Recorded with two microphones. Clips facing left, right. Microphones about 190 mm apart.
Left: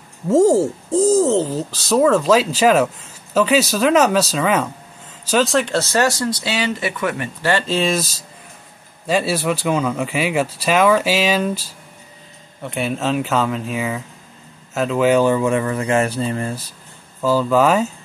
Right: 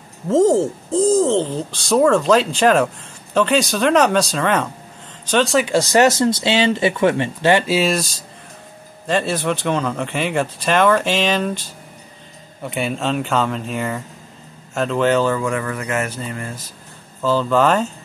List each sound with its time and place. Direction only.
0.3 s speech: 10° left (ahead or behind)
5.7 s speech: 15° right (ahead or behind)
7.6 s speech: 5° right (ahead or behind)
12.6 s speech: centre (ahead or behind); by 16.6 s 30° left (ahead or behind)
17.2 s speech: 10° left (ahead or behind)